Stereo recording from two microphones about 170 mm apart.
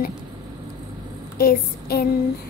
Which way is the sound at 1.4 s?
65° left (ahead or behind).